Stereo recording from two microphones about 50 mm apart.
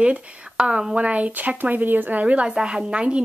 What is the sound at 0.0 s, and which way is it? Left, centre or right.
Speech, right.